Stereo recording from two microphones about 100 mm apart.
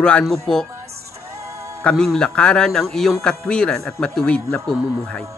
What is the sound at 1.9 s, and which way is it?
A man's voice, 5° left (ahead or behind).